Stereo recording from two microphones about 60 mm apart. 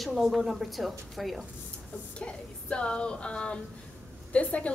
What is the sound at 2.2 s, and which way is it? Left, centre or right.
A woman's voice, centre.